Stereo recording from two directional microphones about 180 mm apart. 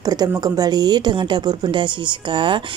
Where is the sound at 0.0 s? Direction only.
20° right (ahead or behind).